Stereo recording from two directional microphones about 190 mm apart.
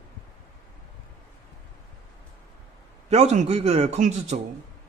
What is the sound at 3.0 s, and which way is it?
A man's voice, 35° right (ahead or behind).